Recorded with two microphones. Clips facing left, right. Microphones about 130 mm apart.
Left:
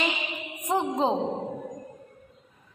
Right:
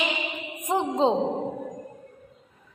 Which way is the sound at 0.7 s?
25° right (ahead or behind).